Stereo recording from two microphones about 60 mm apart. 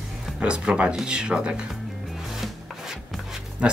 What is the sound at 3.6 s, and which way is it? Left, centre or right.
Speech, centre.